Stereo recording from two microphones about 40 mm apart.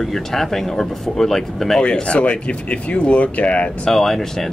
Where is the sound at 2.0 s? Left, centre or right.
Left.